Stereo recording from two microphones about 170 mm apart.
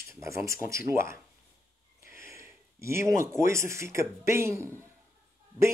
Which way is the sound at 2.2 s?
15° right (ahead or behind).